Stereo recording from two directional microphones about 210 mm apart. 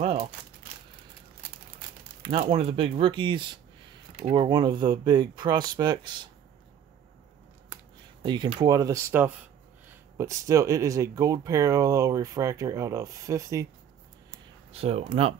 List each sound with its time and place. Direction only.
2.5 s speech: 25° right (ahead or behind)
8.2 s speech: 20° right (ahead or behind)
14.7 s speech: 30° right (ahead or behind)